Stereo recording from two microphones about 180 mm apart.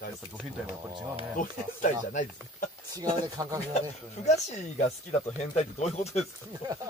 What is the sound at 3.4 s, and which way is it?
Speech, 20° right (ahead or behind).